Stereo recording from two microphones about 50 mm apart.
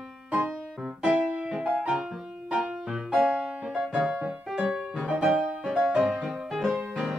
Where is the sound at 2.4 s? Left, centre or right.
Centre.